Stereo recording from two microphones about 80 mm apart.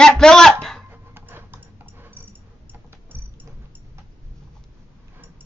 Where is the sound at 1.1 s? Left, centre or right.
Right.